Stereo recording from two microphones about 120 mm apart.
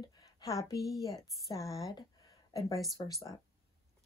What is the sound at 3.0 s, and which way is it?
Speech, 40° left (ahead or behind).